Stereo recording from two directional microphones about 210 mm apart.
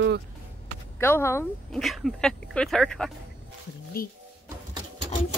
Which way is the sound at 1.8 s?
Centre (ahead or behind).